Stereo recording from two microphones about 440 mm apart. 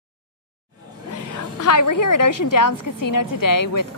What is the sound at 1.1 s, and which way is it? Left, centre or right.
A woman's voice, left.